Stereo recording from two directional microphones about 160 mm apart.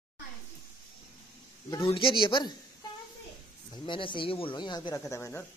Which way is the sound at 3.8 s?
30° left (ahead or behind).